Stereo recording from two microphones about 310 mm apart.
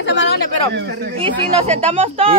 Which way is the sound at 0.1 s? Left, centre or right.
Left.